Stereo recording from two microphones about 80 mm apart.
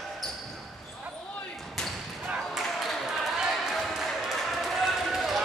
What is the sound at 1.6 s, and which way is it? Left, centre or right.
Basketball bounce, centre.